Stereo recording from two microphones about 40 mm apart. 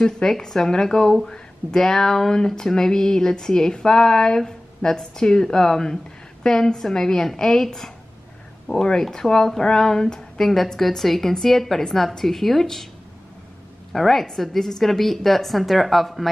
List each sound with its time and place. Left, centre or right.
0.0 s speech: centre
9.1 s speech: centre
10.8 s speech: centre
13.9 s a woman's voice: centre